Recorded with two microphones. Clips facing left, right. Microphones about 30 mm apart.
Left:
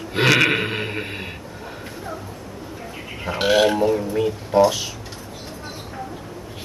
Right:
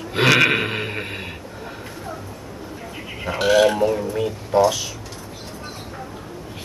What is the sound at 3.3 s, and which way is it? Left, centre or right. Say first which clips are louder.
Speech: right 1 dB; centre.